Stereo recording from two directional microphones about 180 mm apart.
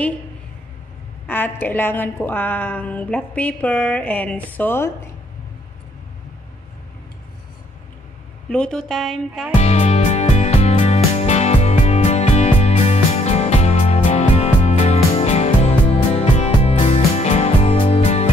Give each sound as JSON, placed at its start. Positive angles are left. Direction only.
{"t": 1.2, "sound": "a woman's voice", "side_deg": 10}
{"t": 8.5, "sound": "speech", "side_deg": 5}
{"t": 9.6, "sound": "music", "side_deg": 40}